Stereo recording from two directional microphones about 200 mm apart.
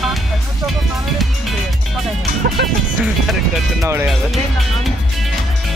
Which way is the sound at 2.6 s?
55° right (ahead or behind).